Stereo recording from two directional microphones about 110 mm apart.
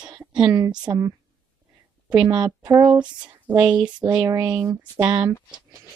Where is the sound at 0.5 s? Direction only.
35° right (ahead or behind).